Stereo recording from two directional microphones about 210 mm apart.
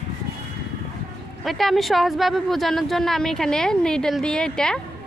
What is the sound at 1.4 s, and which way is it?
Speech, centre (ahead or behind).